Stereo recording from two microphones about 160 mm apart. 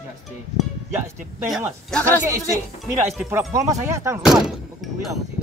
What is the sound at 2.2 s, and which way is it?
Speech, 20° right (ahead or behind).